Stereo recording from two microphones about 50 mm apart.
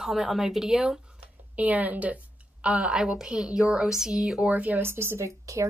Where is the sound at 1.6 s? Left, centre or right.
Right; by 4.4 s centre.